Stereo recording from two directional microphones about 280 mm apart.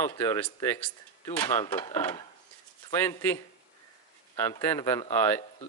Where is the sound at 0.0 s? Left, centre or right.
Centre.